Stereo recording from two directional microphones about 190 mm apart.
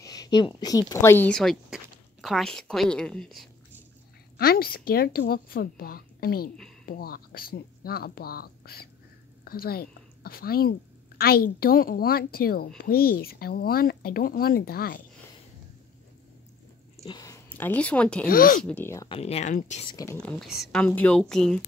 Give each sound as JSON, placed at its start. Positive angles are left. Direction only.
{"t": 0.0, "sound": "a sound", "side_deg": 20}
{"t": 0.6, "sound": "a woman's voice", "side_deg": 20}
{"t": 4.4, "sound": "a woman's voice", "side_deg": 50}
{"t": 17.0, "sound": "speech", "side_deg": 20}
{"t": 18.3, "sound": "a woman's voice", "side_deg": 50}
{"t": 18.6, "sound": "speech", "side_deg": 5}
{"t": 19.0, "sound": "speech", "side_deg": 30}
{"t": 19.9, "sound": "speech", "side_deg": 20}
{"t": 20.2, "sound": "a woman's voice", "side_deg": 5}